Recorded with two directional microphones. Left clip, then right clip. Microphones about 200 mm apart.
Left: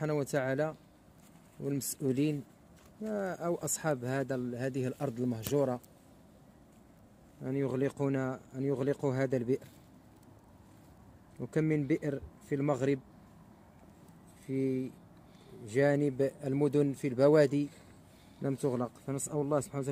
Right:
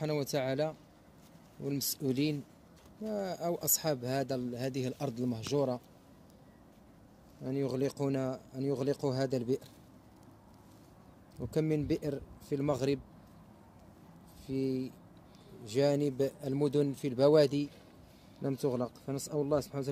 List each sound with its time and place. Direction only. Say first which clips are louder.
0.0 s speech: left 1 dB; 30° left (ahead or behind)
7.4 s speech: left 1 dB; 35° left (ahead or behind)
11.5 s speech: left 1 dB; 35° left (ahead or behind)
14.5 s speech: left 1 dB; 35° left (ahead or behind)